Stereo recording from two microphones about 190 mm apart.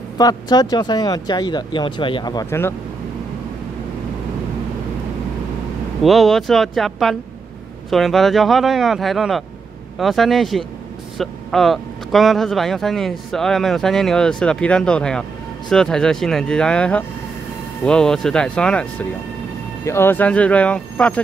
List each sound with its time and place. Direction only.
0.2 s speech: 20° left (ahead or behind)
6.0 s speech: centre (ahead or behind)